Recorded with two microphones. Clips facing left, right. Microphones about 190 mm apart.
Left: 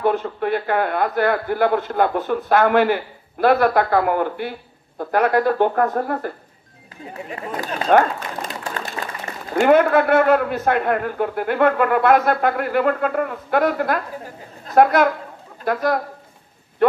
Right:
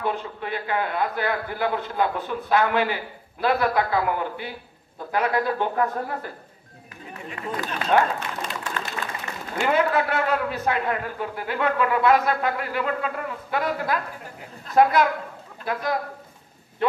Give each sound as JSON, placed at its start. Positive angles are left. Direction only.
{"t": 0.0, "sound": "speech", "side_deg": 55}
{"t": 7.3, "sound": "speech", "side_deg": 40}
{"t": 9.0, "sound": "a sound", "side_deg": 30}
{"t": 9.6, "sound": "speech", "side_deg": 55}